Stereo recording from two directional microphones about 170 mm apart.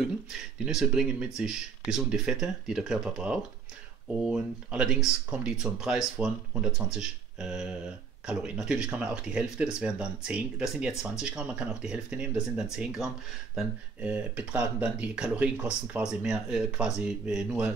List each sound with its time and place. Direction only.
0.0 s speech: centre (ahead or behind)